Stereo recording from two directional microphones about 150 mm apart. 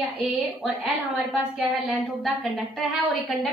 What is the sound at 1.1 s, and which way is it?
A woman's voice, centre (ahead or behind).